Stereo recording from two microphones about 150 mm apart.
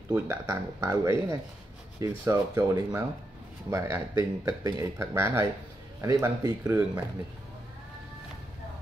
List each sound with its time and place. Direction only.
0.1 s speech: 20° right (ahead or behind)